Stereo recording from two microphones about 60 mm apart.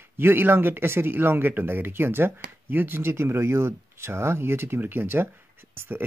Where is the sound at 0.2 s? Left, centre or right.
Right.